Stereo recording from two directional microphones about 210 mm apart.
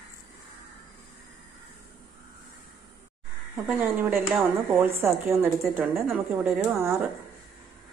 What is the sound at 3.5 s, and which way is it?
Speech, 5° right (ahead or behind).